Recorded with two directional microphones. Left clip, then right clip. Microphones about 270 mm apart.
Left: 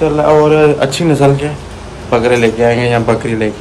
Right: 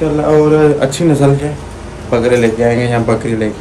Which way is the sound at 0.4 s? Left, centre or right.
Centre.